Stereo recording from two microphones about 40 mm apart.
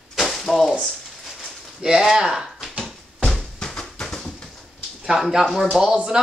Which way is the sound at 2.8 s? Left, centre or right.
Centre.